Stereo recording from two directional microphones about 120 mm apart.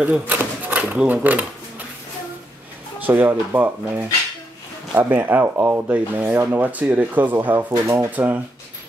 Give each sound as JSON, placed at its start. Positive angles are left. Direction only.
{"t": 0.0, "sound": "speech", "side_deg": -15}
{"t": 3.0, "sound": "speech", "side_deg": -20}
{"t": 8.1, "sound": "speech", "side_deg": -15}